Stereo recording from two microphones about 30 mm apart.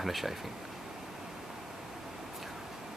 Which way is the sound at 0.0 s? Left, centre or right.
Centre.